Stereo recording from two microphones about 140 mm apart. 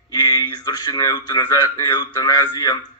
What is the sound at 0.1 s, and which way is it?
A man's voice, 30° left (ahead or behind).